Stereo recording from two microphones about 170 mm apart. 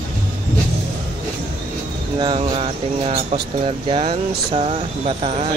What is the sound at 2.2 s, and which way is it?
Speech, 30° right (ahead or behind).